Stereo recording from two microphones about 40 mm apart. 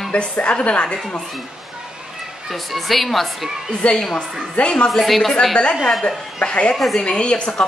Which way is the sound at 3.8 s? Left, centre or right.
Left.